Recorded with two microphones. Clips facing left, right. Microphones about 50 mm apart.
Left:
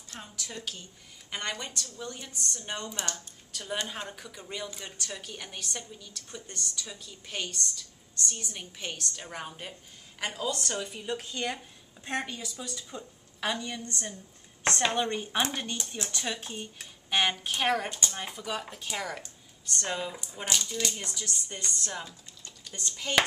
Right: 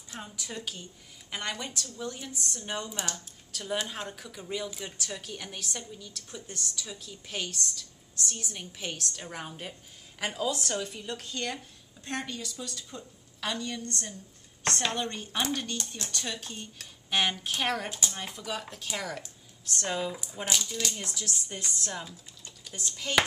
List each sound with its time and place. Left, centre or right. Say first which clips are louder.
0.1 s a woman's voice: right 2 dB; centre
17.1 s a woman's voice: left 1 dB; centre
22.4 s a sound: even; centre